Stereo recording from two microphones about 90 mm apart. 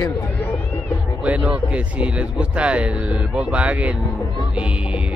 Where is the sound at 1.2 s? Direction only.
15° right (ahead or behind).